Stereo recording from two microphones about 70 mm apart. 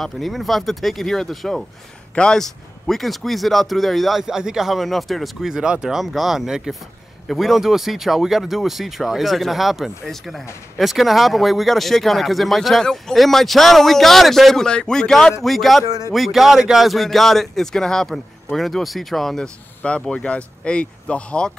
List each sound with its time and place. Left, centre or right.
0.0 s speech: centre